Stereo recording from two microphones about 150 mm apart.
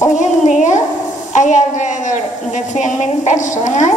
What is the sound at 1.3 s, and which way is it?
A woman's voice, 55° left (ahead or behind).